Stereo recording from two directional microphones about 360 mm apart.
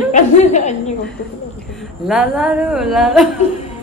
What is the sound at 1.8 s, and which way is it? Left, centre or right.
A woman's voice, centre.